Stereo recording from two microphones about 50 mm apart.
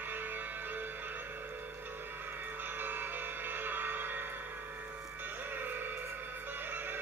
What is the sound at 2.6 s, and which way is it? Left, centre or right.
Music, right.